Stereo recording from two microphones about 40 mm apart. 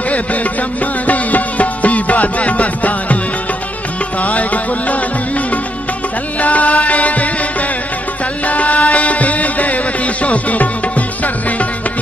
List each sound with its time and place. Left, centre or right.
0.1 s music: left
4.2 s music: left
6.4 s music: left
8.5 s music: left